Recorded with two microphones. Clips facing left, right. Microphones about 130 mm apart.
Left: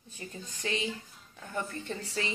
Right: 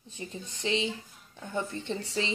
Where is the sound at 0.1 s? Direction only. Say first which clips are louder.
Right 3 dB; 25° right (ahead or behind).